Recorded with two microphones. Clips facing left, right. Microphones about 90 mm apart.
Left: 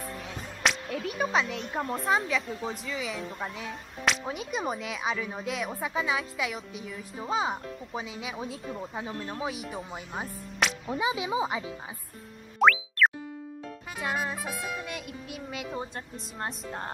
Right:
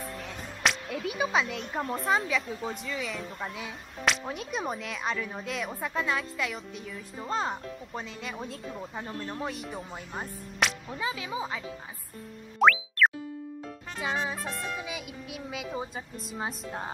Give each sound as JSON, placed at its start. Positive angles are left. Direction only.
{"t": 0.0, "sound": "speech", "side_deg": 0}
{"t": 11.0, "sound": "speech", "side_deg": 15}
{"t": 12.5, "sound": "music", "side_deg": 0}
{"t": 13.9, "sound": "speech", "side_deg": 0}